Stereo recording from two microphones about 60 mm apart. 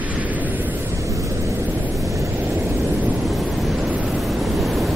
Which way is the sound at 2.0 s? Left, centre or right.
Right.